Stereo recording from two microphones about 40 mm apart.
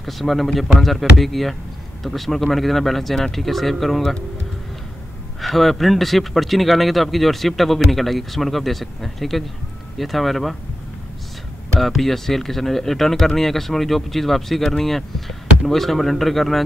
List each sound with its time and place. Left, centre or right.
0.0 s speech: centre
5.4 s speech: centre
11.8 s speech: centre